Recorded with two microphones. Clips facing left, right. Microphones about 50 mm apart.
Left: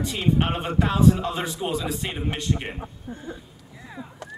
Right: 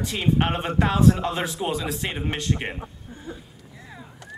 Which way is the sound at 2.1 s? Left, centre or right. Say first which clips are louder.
Right 1 dB; centre.